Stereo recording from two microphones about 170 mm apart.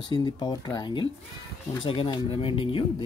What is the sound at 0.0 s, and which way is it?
Speech, 25° left (ahead or behind).